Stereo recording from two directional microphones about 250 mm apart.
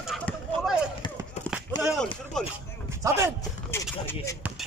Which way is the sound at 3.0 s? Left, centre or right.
Centre.